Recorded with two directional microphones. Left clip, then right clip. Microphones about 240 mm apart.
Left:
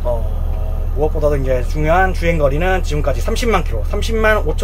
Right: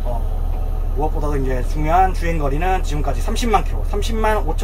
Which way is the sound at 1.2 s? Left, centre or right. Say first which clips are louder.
Left 7 dB; centre.